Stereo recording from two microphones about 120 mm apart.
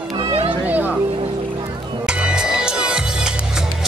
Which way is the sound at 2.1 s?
10° right (ahead or behind).